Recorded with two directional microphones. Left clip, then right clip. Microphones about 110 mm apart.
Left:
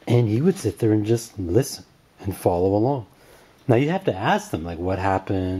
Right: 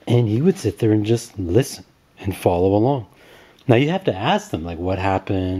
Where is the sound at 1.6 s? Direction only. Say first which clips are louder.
Right 3 dB; 65° right (ahead or behind).